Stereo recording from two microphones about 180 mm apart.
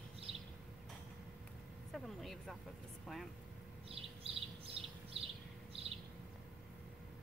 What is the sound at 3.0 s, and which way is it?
Speech, centre (ahead or behind).